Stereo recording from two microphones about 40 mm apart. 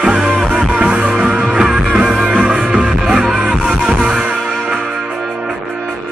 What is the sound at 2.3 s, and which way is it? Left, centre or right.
Music, centre.